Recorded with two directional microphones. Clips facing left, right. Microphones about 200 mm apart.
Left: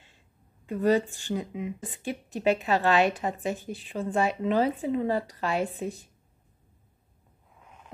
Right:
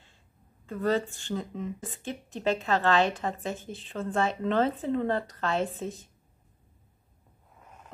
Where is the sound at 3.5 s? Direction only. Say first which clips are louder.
Left 3 dB; 20° right (ahead or behind).